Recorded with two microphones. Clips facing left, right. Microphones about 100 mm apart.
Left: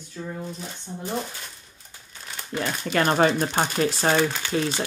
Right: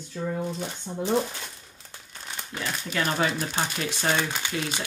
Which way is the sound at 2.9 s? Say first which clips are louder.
Left 6 dB; 45° left (ahead or behind).